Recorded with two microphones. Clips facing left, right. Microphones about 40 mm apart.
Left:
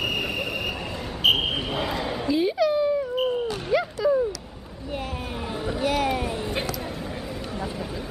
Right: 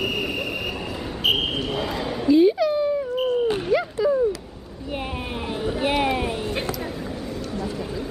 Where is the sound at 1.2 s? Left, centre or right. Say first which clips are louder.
Left 1 dB; centre.